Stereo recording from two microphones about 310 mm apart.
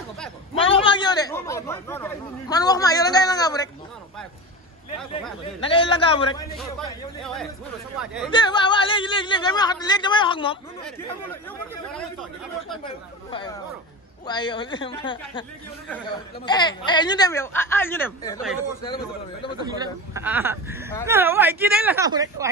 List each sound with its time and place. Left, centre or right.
0.6 s chatter: centre
5.6 s speech: centre
8.0 s speech: centre
8.3 s speech: centre
12.8 s speech: centre
16.4 s speech: centre
19.6 s speech: centre